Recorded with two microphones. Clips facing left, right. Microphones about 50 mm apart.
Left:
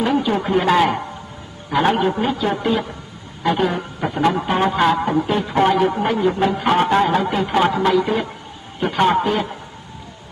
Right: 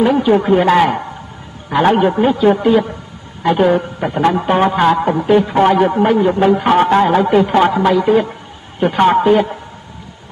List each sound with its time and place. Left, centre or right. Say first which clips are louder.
0.0 s a man's voice: right 7 dB; centre